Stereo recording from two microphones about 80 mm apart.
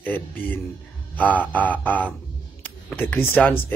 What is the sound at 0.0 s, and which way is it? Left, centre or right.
Speech, left.